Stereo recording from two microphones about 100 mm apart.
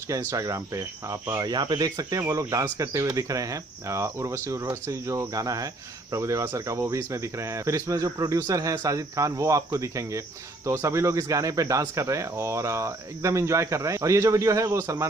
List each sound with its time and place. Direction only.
0.3 s speech: 40° right (ahead or behind)